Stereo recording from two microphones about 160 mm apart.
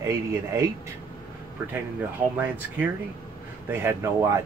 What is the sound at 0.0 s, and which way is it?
Speech, 20° right (ahead or behind).